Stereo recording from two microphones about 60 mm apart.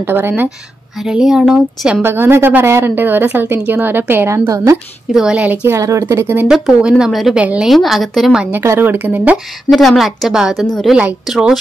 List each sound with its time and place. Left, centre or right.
0.0 s speech: right
0.9 s speech: centre
2.0 s speech: right
4.3 s a woman's voice: right
5.1 s speech: centre
5.4 s speech: right
5.7 s speech: right
6.4 s a woman's voice: centre
7.1 s a woman's voice: centre
7.3 s speech: centre
7.6 s a woman's voice: centre
8.6 s speech: right
9.7 s a woman's voice: centre